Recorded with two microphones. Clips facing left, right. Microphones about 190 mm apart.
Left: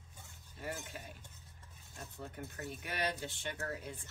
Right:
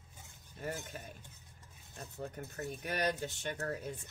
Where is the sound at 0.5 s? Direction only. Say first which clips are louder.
Right 2 dB; 45° right (ahead or behind).